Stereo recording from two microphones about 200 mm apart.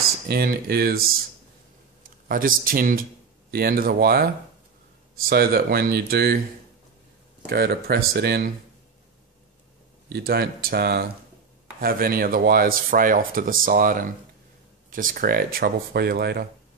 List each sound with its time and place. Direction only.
0.3 s speech: 50° right (ahead or behind)
2.2 s speech: 45° right (ahead or behind)
5.3 s speech: 50° right (ahead or behind)
7.4 s speech: 50° right (ahead or behind)
10.0 s speech: 50° right (ahead or behind)